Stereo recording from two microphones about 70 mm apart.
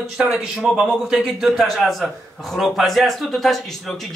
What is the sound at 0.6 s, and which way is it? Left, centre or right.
A man's voice, centre.